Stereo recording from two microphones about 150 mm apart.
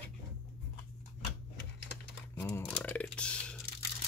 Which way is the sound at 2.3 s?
15° left (ahead or behind).